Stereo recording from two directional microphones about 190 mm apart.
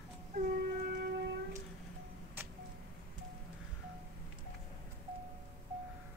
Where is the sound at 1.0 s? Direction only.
55° right (ahead or behind).